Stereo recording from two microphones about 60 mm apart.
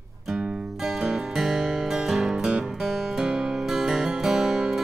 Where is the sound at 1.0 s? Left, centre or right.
Centre.